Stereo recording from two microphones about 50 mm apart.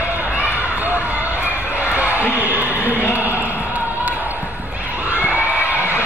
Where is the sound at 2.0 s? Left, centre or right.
Right.